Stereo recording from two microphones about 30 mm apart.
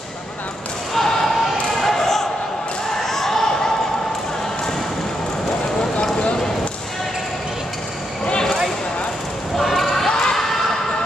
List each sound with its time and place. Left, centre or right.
0.9 s slam: centre
1.8 s basketball bounce: centre
3.1 s a sound: centre
8.3 s basketball bounce: left
9.6 s basketball bounce: centre
10.0 s crowd: left